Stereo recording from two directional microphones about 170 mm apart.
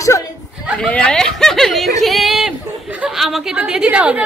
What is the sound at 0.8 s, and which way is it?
A woman's voice, 5° left (ahead or behind).